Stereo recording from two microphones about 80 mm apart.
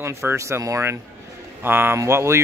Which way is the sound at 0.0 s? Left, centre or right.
Right.